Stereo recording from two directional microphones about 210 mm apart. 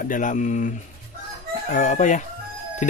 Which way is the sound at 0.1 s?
40° left (ahead or behind).